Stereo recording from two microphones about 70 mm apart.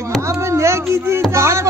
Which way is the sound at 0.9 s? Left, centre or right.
Right.